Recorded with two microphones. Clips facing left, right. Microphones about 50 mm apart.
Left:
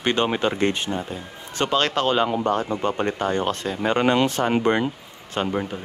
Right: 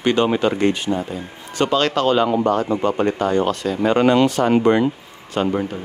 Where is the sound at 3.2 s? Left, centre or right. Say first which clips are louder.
Right 4 dB; left.